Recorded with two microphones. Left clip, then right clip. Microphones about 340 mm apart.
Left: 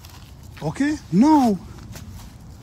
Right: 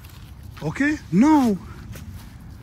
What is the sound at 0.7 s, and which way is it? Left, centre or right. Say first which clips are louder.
Speech: right 1 dB; centre.